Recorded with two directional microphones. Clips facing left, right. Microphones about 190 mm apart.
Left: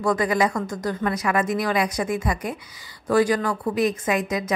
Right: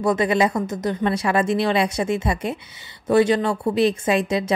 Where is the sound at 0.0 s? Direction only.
25° right (ahead or behind).